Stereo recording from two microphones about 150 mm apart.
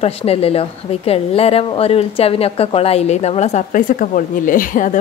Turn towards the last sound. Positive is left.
turn(degrees=60)  # may be behind; listen again after turning